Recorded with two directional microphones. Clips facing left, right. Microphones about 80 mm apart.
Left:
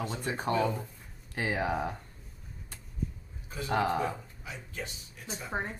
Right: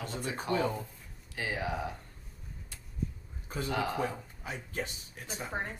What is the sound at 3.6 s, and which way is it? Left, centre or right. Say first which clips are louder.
Speech: left 4 dB; left.